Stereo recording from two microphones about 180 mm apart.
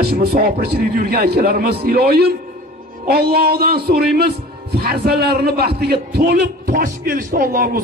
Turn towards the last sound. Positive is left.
turn(degrees=-55)  # may be behind; listen again after turning